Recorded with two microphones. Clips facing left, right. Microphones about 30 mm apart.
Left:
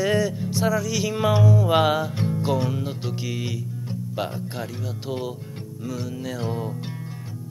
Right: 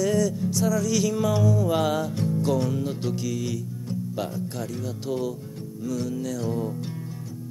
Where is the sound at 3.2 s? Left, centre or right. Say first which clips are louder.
Right 1 dB; left.